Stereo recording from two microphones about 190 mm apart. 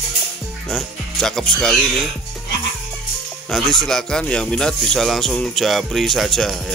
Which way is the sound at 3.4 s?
Centre (ahead or behind).